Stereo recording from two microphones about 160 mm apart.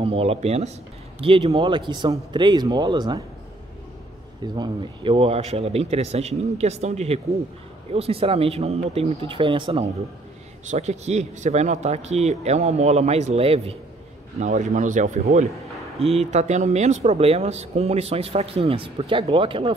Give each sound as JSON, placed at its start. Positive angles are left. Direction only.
{"t": 0.0, "sound": "speech", "side_deg": -35}
{"t": 4.4, "sound": "speech", "side_deg": -30}
{"t": 14.4, "sound": "speech", "side_deg": -50}